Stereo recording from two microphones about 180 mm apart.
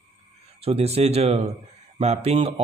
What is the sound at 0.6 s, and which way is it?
Speech, 35° right (ahead or behind).